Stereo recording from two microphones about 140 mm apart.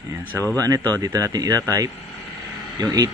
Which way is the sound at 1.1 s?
25° right (ahead or behind).